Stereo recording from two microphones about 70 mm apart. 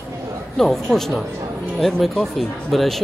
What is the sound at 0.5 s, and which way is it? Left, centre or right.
A man's voice, centre.